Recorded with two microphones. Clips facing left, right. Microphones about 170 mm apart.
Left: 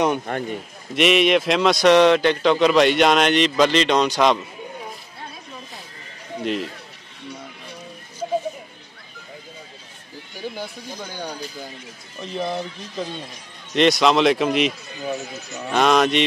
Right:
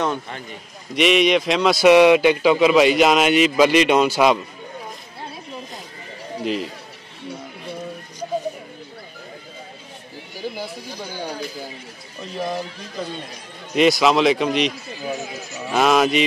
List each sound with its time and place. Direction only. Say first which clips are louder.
0.3 s a man's voice: left 8 dB; 55° left (ahead or behind)
0.9 s a man's voice: even; centre (ahead or behind)
6.4 s a man's voice: right 1 dB; centre (ahead or behind)
11.0 s a man's voice: right 2 dB; 5° right (ahead or behind)
13.7 s a man's voice: right 1 dB; centre (ahead or behind)